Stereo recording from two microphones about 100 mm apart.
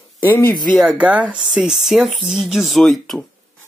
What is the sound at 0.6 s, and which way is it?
Speech, centre (ahead or behind).